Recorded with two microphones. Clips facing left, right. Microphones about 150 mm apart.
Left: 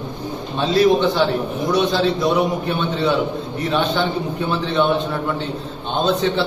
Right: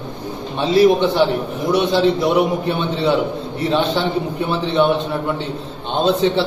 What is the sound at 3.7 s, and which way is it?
Speech, 25° right (ahead or behind).